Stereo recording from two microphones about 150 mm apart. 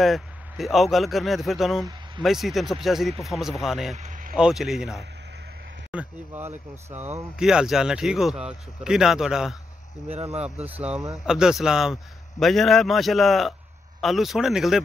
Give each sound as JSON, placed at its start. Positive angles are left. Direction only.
{"t": 0.0, "sound": "speech", "side_deg": 0}
{"t": 3.9, "sound": "vehicle", "side_deg": -55}
{"t": 4.4, "sound": "speech", "side_deg": -5}
{"t": 10.0, "sound": "speech", "side_deg": -45}
{"t": 10.4, "sound": "speech", "side_deg": -10}